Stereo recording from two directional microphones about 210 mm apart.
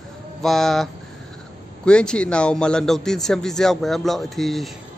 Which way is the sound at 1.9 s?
5° left (ahead or behind).